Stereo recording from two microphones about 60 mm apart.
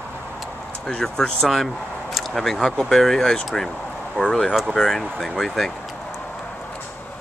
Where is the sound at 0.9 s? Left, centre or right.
Centre.